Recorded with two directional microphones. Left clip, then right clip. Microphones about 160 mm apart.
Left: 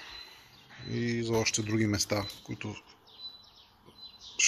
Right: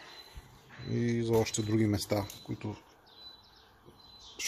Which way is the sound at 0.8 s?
20° right (ahead or behind).